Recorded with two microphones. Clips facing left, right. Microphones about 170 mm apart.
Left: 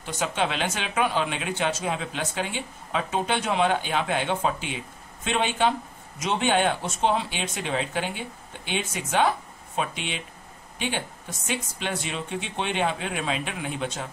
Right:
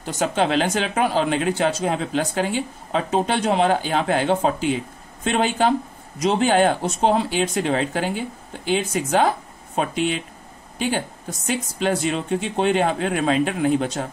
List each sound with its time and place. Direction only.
0.0 s speech: 40° right (ahead or behind)